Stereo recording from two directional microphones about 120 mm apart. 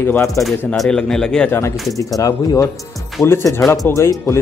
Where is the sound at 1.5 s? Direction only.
20° left (ahead or behind).